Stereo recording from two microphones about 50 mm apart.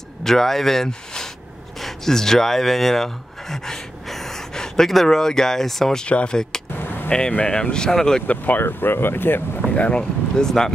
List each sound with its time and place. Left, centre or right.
0.2 s speech: centre
6.0 s speech: left
6.8 s vehicle: left
7.1 s speech: centre
8.5 s speech: left
9.8 s speech: left